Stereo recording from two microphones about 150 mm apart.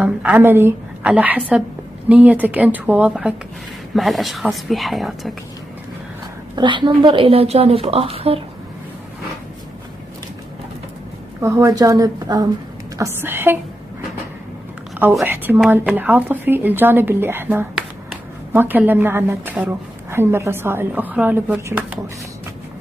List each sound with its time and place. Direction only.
0.0 s a woman's voice: 10° right (ahead or behind)
6.5 s a woman's voice: 30° right (ahead or behind)
11.4 s a woman's voice: 20° right (ahead or behind)
15.2 s speech: 15° right (ahead or behind)